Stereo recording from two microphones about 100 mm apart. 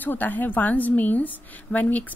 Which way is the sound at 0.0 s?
20° left (ahead or behind).